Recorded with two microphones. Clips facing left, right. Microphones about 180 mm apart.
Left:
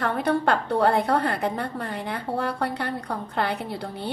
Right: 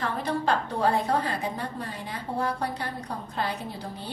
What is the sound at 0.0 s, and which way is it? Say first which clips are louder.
A woman's voice: left 5 dB; 60° left (ahead or behind).